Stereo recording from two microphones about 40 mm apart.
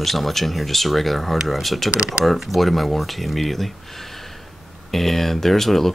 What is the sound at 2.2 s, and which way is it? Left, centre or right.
Speech, centre.